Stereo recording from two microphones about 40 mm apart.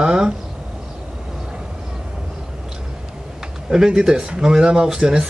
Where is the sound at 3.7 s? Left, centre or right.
Centre.